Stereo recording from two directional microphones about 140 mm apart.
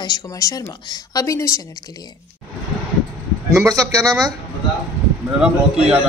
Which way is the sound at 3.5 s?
25° right (ahead or behind).